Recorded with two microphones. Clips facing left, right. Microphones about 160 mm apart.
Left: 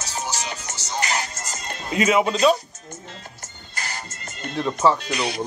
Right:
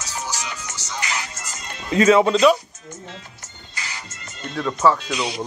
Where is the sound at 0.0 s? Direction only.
25° left (ahead or behind).